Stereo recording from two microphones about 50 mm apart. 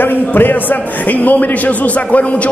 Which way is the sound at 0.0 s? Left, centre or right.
Left.